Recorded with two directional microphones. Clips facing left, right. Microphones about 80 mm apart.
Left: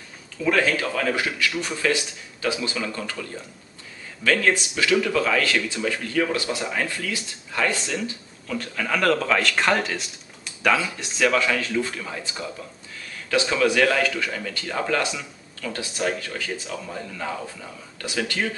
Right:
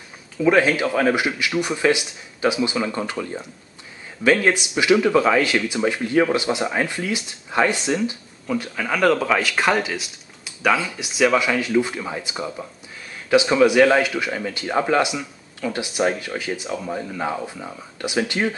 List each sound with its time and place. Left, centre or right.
0.4 s speech: right